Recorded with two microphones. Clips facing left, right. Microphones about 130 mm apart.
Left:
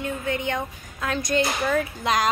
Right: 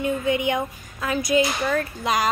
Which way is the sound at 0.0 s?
15° right (ahead or behind).